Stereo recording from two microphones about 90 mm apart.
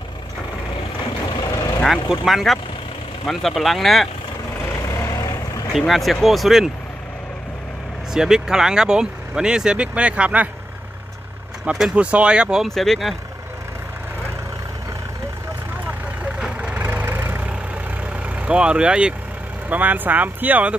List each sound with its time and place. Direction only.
1.3 s vehicle: 50° left (ahead or behind)
1.8 s speech: centre (ahead or behind)
4.8 s vehicle: 35° left (ahead or behind)
5.7 s speech: centre (ahead or behind)
8.1 s speech: 5° right (ahead or behind)
11.6 s speech: 10° right (ahead or behind)
12.6 s speech: 5° left (ahead or behind)
16.3 s vehicle: 10° right (ahead or behind)
16.8 s vehicle: 20° right (ahead or behind)
18.2 s speech: 15° right (ahead or behind)